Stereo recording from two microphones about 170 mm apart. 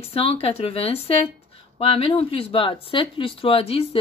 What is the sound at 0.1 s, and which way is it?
Speech, 35° left (ahead or behind).